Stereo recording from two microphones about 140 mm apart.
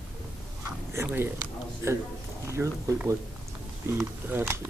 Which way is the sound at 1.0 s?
15° right (ahead or behind).